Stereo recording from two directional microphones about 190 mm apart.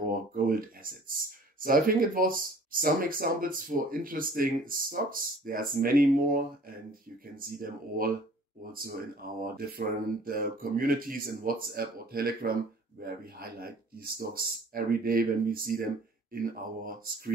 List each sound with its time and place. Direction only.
0.0 s speech: 50° right (ahead or behind)